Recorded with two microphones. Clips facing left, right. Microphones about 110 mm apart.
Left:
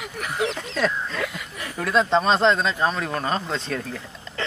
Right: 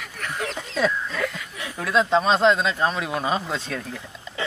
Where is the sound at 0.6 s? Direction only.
5° right (ahead or behind).